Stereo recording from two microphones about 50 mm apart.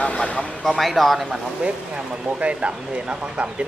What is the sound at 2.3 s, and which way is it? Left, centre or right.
Speech, right.